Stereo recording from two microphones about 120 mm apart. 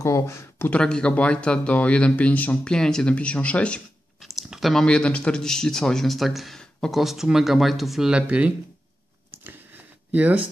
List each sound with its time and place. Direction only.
0.0 s speech: 25° left (ahead or behind)
0.7 s speech: 10° left (ahead or behind); by 8.5 s 10° right (ahead or behind)
9.3 s a sound: 15° right (ahead or behind)
10.1 s speech: 15° right (ahead or behind)